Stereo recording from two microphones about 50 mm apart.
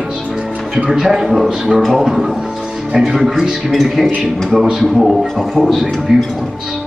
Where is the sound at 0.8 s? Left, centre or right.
Centre.